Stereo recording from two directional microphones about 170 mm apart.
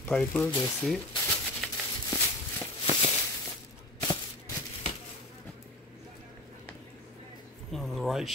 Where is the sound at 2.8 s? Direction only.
30° left (ahead or behind).